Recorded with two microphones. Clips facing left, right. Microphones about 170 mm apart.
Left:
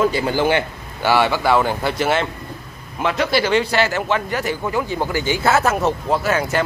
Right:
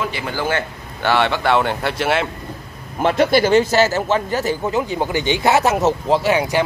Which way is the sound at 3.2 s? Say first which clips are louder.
Right 4 dB; 50° right (ahead or behind).